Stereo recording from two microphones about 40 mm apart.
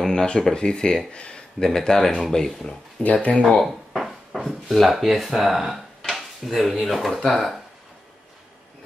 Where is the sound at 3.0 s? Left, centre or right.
Left.